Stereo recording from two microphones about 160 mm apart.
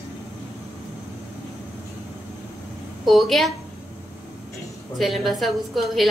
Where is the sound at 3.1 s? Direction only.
Centre (ahead or behind).